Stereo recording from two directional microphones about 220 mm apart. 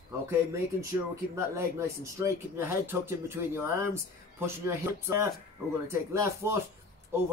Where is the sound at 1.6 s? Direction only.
15° right (ahead or behind).